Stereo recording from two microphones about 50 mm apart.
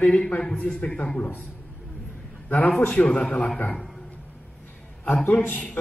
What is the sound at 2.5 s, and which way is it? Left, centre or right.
Speech, left.